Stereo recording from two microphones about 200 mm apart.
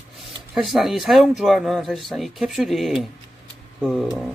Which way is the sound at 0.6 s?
Centre (ahead or behind).